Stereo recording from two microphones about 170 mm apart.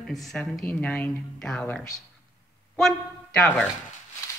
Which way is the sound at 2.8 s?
5° left (ahead or behind).